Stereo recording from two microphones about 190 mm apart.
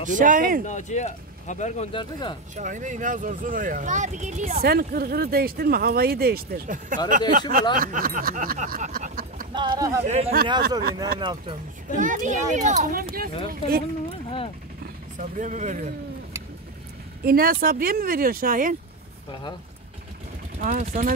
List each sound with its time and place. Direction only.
0.1 s speech: 45° right (ahead or behind)
0.7 s speech: 40° left (ahead or behind)
2.5 s speech: 40° right (ahead or behind)
7.7 s a sound: 45° right (ahead or behind)
9.5 s speech: 25° right (ahead or behind)
10.0 s a child's voice: 35° right (ahead or behind)
11.9 s a child's voice: 45° right (ahead or behind)
15.1 s a child's voice: 40° right (ahead or behind)
17.2 s speech: 50° right (ahead or behind)
20.6 s speech: 45° right (ahead or behind)